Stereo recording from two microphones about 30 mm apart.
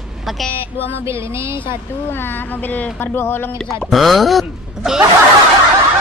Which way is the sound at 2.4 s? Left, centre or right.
Left.